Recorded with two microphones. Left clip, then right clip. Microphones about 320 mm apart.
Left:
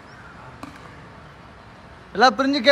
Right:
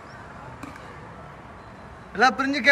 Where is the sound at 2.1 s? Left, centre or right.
Centre.